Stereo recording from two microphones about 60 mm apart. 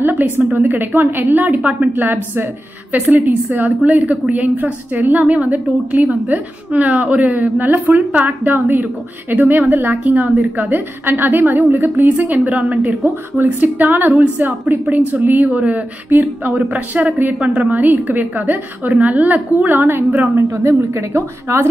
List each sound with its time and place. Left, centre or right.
0.0 s a sound: right
0.4 s a woman's voice: right
20.5 s a woman's voice: right